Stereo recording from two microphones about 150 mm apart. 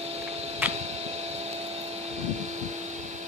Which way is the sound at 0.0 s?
45° right (ahead or behind).